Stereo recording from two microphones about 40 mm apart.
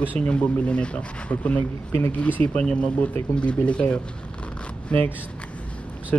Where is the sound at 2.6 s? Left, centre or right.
Left.